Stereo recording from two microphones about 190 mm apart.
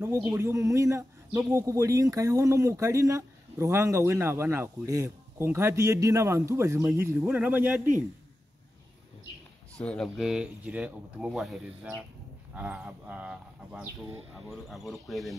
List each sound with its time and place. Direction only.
0.0 s speech: 15° right (ahead or behind)
9.8 s speech: 5° left (ahead or behind)